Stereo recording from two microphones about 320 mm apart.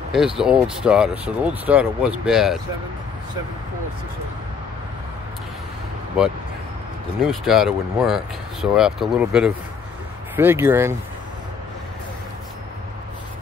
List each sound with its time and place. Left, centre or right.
0.1 s speech: centre
7.2 s speech: centre